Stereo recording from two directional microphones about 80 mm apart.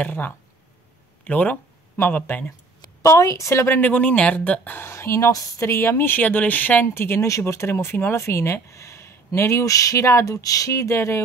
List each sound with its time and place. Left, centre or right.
0.0 s speech: left
2.8 s speech: left; by 4.8 s centre
4.8 s speech: left